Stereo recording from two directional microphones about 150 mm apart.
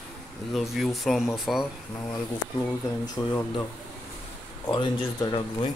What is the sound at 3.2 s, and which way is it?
Speech, 25° left (ahead or behind).